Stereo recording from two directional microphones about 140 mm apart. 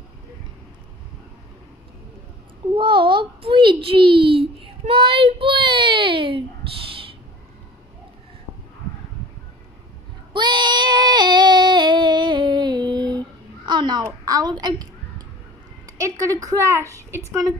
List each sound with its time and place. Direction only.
2.7 s a child's voice: 35° right (ahead or behind)
10.3 s child singing: 35° right (ahead or behind)
13.7 s crow: 30° right (ahead or behind)
14.0 s a sound: 25° right (ahead or behind)
16.0 s a woman's voice: 25° right (ahead or behind)